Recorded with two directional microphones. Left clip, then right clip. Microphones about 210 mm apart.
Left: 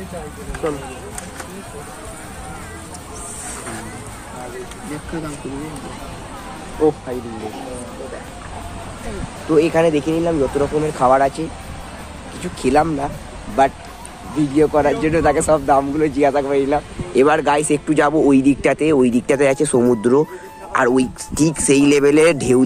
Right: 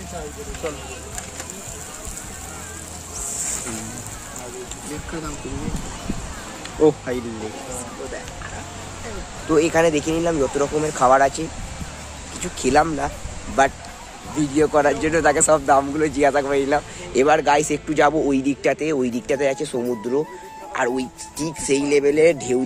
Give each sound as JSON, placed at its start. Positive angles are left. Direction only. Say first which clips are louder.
{"t": 9.6, "sound": "speech", "louder": "left 3 dB", "side_deg": -10}
{"t": 17.3, "sound": "speech", "louder": "left 1 dB", "side_deg": 5}